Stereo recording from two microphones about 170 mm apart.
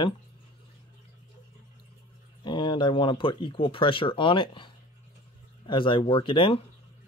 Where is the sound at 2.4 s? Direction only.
25° left (ahead or behind).